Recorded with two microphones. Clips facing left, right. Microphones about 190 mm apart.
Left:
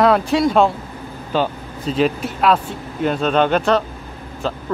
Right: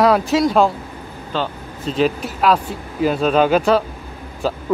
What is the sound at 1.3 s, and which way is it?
Speech, 15° left (ahead or behind).